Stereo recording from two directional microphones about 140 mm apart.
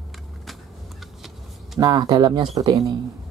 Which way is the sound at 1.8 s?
30° right (ahead or behind).